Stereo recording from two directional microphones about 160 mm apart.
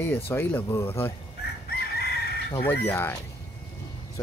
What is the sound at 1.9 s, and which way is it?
Chicken, 80° left.